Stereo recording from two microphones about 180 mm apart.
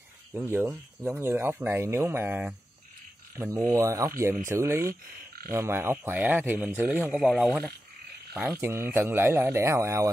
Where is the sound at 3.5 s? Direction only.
15° right (ahead or behind).